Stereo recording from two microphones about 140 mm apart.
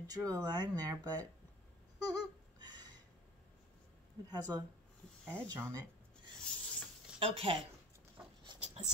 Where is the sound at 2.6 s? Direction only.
30° right (ahead or behind).